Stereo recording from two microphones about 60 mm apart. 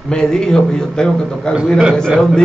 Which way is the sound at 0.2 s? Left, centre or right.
Centre.